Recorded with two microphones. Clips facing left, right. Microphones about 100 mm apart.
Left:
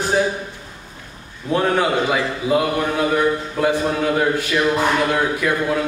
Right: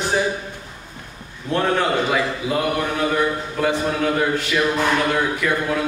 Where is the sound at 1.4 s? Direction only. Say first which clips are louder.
Left 2 dB; 10° left (ahead or behind).